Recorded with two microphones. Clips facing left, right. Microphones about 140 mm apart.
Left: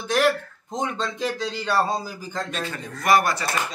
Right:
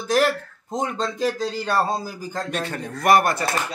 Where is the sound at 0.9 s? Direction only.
40° right (ahead or behind).